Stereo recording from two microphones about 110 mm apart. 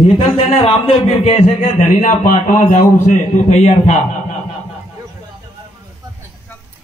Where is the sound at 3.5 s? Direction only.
90° left.